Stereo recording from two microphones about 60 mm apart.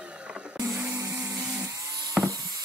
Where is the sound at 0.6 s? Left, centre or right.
Right.